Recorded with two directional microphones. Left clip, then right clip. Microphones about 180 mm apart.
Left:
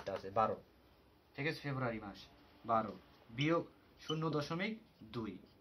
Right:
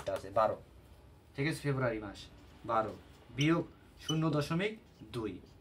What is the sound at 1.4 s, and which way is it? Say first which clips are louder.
Speech: right 5 dB; 30° left (ahead or behind).